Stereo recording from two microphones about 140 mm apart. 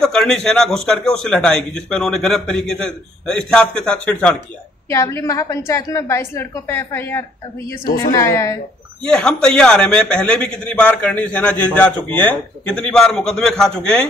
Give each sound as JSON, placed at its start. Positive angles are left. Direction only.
{"t": 0.0, "sound": "a man's voice", "side_deg": 5}
{"t": 4.8, "sound": "a woman's voice", "side_deg": 20}
{"t": 9.1, "sound": "a man's voice", "side_deg": 5}